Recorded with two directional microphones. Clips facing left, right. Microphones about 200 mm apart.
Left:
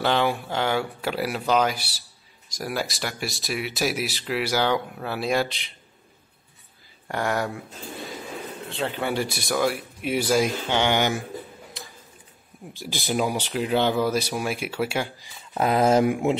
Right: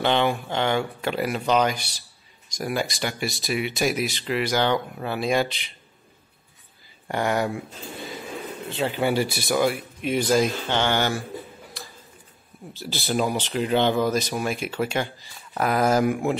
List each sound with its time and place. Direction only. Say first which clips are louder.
0.0 s speech: right 1 dB; 5° left (ahead or behind)
7.1 s speech: right 2 dB; centre (ahead or behind)
8.6 s speech: right 4 dB; centre (ahead or behind); by 11.2 s 15° left (ahead or behind)
12.7 s speech: right 1 dB; 15° left (ahead or behind)
15.5 s speech: left 2 dB; 25° left (ahead or behind)